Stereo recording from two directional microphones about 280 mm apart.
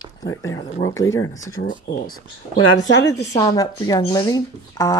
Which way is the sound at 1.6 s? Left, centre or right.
Left.